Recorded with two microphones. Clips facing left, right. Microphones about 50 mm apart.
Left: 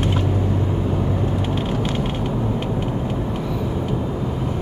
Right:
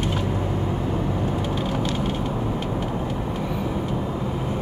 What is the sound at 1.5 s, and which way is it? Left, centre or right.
Vehicle, left.